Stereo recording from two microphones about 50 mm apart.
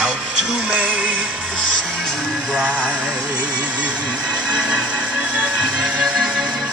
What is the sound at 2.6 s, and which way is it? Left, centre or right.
Music, right.